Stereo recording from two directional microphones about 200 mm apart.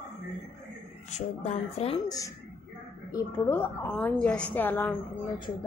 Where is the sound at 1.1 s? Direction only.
30° left (ahead or behind).